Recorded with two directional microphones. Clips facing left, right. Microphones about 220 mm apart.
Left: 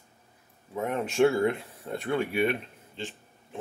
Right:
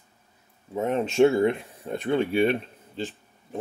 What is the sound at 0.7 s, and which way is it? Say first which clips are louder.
Speech: right 5 dB; 25° right (ahead or behind).